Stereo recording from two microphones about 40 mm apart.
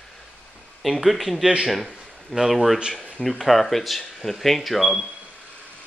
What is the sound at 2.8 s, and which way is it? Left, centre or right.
Speech, right.